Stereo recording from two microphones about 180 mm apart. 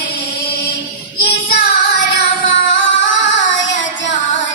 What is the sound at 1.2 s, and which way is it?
Child singing, 60° left (ahead or behind).